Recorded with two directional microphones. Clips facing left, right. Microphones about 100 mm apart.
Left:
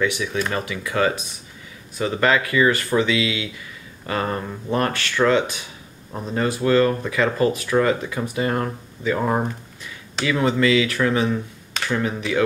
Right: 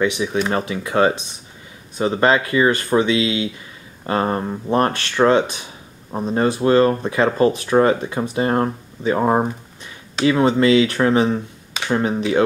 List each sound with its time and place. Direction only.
0.0 s speech: 25° right (ahead or behind)